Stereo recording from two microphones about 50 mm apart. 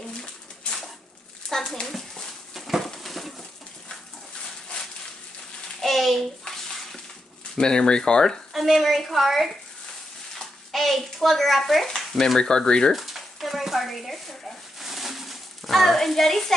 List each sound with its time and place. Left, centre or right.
0.2 s pigeon: centre
1.8 s dog: centre
2.8 s a sound: centre
5.8 s bathtub: centre
7.5 s speech: centre
8.5 s a woman's voice: centre
10.7 s a child's voice: centre
12.4 s speech: centre
12.9 s a sound: centre